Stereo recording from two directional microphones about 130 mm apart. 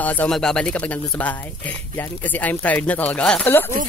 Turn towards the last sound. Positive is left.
turn(degrees=15)  # may be behind; listen again after turning